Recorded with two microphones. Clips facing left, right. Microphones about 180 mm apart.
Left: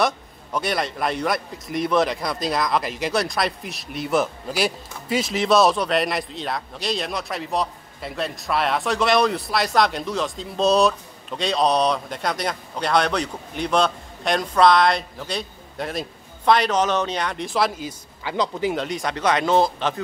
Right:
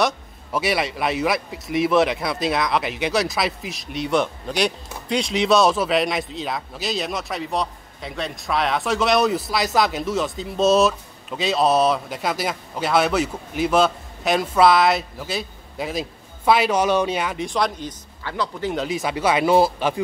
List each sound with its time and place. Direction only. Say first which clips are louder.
0.0 s a man's voice: even; 5° right (ahead or behind)
18.3 s speech: left 3 dB; 20° left (ahead or behind)
18.7 s speech: right 1 dB; centre (ahead or behind)